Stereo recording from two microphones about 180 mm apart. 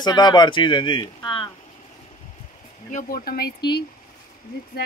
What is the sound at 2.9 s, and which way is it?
Speech, 50° left (ahead or behind).